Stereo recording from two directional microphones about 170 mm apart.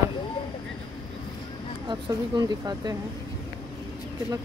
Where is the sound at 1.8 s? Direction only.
25° right (ahead or behind).